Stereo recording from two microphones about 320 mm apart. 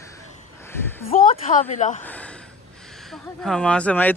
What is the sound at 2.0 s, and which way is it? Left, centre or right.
Speech, centre.